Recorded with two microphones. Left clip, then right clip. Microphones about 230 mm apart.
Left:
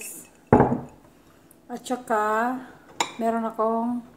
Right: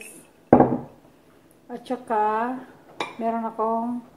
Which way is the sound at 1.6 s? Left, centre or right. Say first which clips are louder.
Left 1 dB; centre.